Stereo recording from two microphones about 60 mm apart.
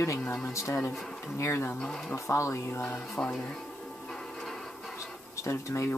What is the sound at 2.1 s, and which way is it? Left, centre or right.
Speech, left.